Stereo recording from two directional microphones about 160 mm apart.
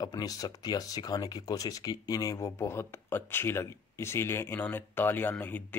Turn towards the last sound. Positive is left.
turn(degrees=10)  # may be behind; listen again after turning